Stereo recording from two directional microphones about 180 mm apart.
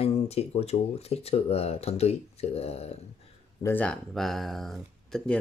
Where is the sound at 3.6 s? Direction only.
10° left (ahead or behind).